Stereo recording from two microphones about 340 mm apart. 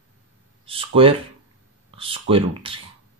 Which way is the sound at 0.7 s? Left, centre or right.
Centre.